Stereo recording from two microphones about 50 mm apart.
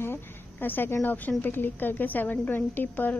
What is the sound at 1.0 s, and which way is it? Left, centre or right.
A woman's voice, left.